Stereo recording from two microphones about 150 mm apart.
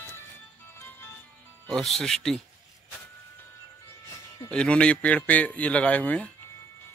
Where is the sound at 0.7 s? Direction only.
15° left (ahead or behind).